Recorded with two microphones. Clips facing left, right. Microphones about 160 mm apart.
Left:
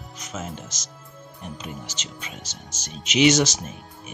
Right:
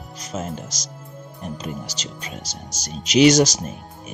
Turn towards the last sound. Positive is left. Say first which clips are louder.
# right 5 dB
turn(degrees=-40)  # may be behind; listen again after turning